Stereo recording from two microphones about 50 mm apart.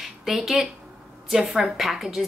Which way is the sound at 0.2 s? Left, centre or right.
Centre.